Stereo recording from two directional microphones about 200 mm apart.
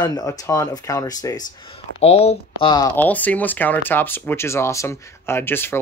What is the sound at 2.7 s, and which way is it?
Speech, 15° left (ahead or behind).